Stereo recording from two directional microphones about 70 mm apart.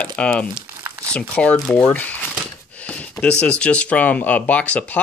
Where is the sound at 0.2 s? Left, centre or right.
Centre.